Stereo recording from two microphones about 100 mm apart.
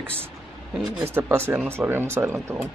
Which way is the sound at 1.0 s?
25° right (ahead or behind).